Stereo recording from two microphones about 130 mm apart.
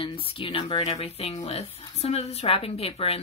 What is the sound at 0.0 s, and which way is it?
A woman's voice, 45° left (ahead or behind).